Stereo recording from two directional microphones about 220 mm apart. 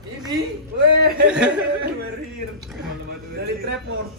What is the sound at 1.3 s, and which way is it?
Speech, 5° right (ahead or behind).